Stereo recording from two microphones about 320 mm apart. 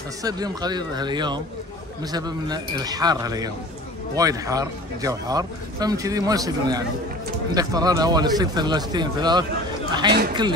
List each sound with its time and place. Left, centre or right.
0.2 s speech: centre